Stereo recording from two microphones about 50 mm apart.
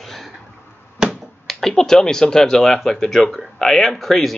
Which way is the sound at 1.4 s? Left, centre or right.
Centre.